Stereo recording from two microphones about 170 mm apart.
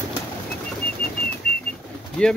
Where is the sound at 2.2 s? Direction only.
5° left (ahead or behind).